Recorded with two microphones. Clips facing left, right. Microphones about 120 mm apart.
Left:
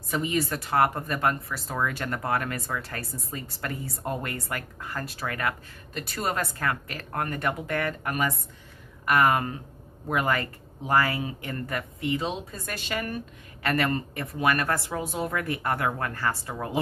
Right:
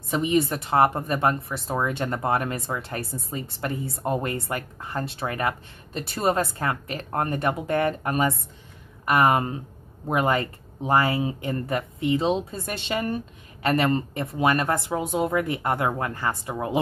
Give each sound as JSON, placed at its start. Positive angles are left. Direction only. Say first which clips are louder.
{"t": 0.1, "sound": "a woman's voice", "louder": "right 5 dB", "side_deg": -25}